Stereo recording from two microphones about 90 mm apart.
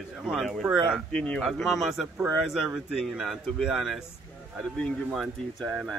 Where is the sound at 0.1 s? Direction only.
5° right (ahead or behind).